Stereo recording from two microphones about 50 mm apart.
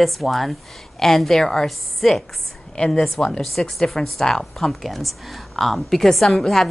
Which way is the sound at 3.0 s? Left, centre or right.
Centre.